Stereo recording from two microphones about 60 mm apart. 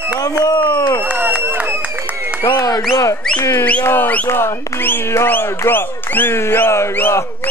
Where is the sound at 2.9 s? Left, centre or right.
Left.